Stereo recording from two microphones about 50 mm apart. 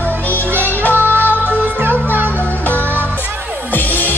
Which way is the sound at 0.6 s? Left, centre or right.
Left.